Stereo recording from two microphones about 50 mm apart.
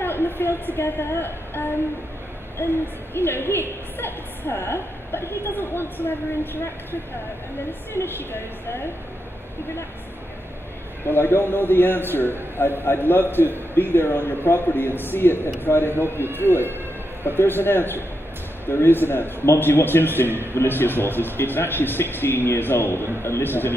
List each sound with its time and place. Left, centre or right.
0.0 s a woman's voice: left
3.2 s a woman's voice: left
8.0 s a woman's voice: left
11.1 s a woman's voice: left